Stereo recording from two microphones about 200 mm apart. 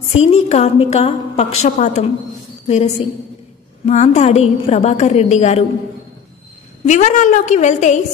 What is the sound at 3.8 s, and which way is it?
A woman's voice, 35° left (ahead or behind).